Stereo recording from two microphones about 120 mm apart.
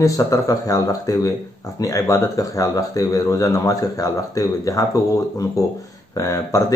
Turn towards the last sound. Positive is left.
turn(degrees=30)  # may be behind; listen again after turning